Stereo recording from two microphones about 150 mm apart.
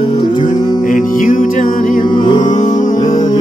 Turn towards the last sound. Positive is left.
turn(degrees=40)  # may be behind; listen again after turning